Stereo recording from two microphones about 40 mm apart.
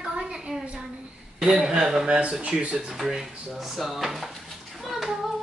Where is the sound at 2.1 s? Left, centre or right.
Right.